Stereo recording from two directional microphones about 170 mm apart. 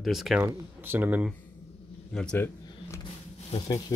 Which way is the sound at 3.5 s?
40° left (ahead or behind).